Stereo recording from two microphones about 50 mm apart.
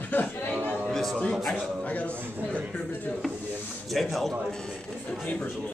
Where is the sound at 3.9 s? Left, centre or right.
Centre.